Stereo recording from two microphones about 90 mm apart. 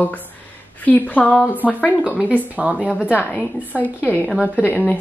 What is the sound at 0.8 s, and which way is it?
A woman's voice, 15° left (ahead or behind).